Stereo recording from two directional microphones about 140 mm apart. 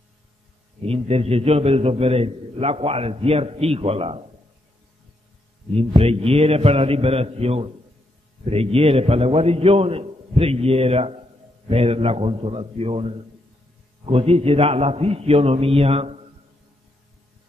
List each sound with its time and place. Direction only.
0.8 s a man's voice: 45° right (ahead or behind)
5.8 s a man's voice: 45° right (ahead or behind)